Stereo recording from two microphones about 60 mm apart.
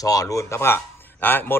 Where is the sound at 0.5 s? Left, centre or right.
Left.